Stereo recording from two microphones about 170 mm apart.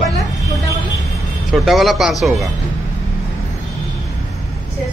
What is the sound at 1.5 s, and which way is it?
Speech, centre (ahead or behind).